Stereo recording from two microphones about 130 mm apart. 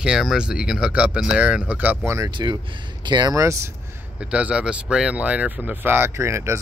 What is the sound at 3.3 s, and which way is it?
Speech, 25° right (ahead or behind).